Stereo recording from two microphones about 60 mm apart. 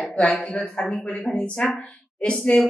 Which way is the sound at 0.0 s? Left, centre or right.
Centre.